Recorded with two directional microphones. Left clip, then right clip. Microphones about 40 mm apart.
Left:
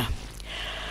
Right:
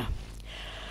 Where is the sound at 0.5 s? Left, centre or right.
Left.